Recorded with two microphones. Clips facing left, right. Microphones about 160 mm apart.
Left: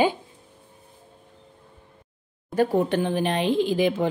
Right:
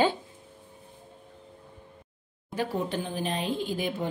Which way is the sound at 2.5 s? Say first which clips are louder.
Left 9 dB; 55° left (ahead or behind).